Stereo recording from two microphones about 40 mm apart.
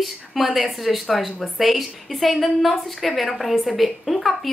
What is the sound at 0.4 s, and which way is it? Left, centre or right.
A woman's voice, centre.